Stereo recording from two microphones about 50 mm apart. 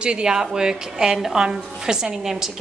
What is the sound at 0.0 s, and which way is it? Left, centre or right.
A woman's voice, centre.